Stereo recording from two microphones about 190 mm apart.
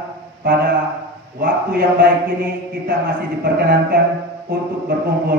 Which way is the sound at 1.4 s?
55° right (ahead or behind).